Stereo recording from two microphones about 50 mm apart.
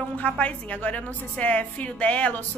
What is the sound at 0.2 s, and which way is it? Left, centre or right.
A woman's voice, left.